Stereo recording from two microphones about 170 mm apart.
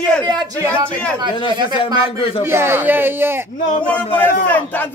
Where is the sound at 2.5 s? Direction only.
15° right (ahead or behind).